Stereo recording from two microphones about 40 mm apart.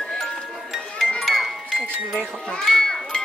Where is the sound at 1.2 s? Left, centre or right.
Centre.